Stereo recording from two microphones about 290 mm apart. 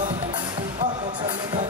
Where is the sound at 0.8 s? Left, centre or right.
Centre.